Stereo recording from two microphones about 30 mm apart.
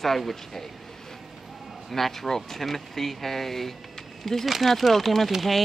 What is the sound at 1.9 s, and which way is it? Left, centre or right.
Speech, centre.